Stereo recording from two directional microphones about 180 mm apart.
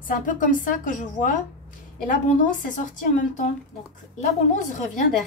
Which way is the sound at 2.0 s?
45° left (ahead or behind).